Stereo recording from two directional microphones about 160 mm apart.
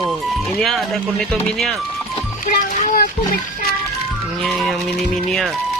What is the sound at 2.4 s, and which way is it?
Speech, 60° left (ahead or behind).